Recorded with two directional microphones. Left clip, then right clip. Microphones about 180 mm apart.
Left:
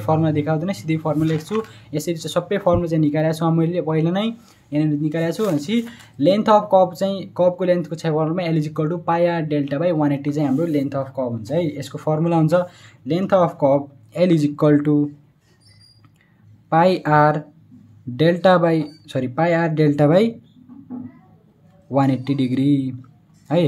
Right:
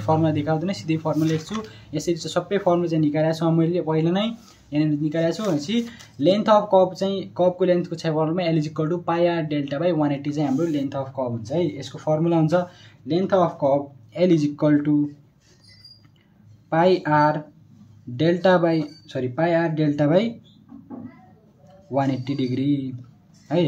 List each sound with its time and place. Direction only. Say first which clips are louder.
0.0 s speech: left 2 dB; 30° left (ahead or behind)
16.6 s speech: left 3 dB; 40° left (ahead or behind)
21.9 s speech: left 4 dB; 40° left (ahead or behind)